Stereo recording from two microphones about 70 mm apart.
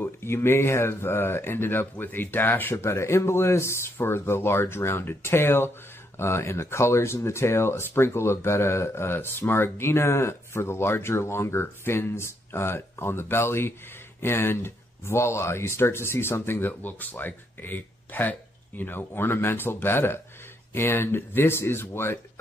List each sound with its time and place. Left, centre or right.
0.0 s speech: left
2.7 s speech: left